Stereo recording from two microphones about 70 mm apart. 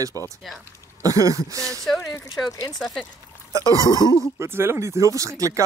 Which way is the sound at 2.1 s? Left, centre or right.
Left.